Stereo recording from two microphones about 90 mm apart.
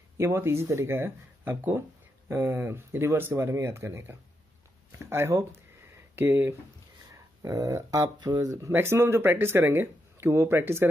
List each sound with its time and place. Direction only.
0.2 s speech: 30° right (ahead or behind)
7.4 s speech: 35° right (ahead or behind)
8.5 s speech: 35° right (ahead or behind)